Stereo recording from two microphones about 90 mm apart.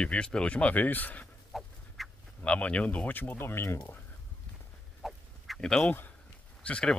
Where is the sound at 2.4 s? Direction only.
15° left (ahead or behind).